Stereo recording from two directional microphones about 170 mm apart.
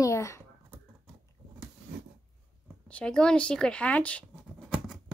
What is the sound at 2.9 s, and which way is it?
Speech, 5° left (ahead or behind).